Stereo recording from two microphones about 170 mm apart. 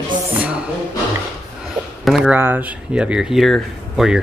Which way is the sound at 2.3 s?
10° right (ahead or behind).